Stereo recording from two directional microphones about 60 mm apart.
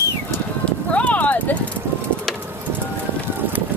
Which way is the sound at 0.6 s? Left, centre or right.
Left.